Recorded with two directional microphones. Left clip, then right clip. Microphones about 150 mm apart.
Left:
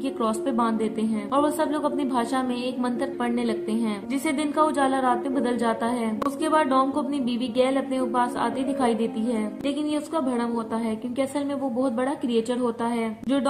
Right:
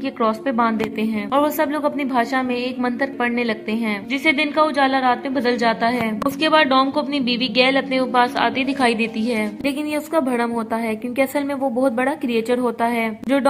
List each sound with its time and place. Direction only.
0.2 s a woman's voice: 15° right (ahead or behind)
9.7 s a woman's voice: 40° right (ahead or behind)